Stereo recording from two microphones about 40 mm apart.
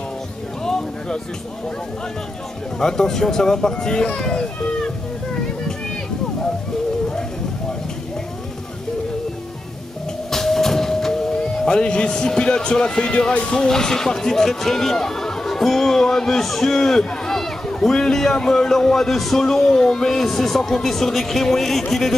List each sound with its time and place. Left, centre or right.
0.7 s a sound: centre
2.8 s speech: centre
10.3 s music: centre; by 13.5 s left
13.5 s speech: centre